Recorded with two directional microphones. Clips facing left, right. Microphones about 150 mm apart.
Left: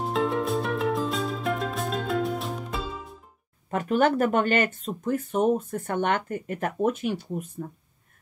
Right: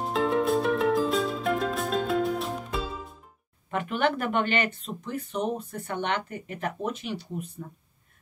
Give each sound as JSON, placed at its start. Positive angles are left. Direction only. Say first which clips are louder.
{"t": 0.0, "sound": "music", "louder": "right 1 dB", "side_deg": 0}
{"t": 3.7, "sound": "speech", "louder": "left 4 dB", "side_deg": 40}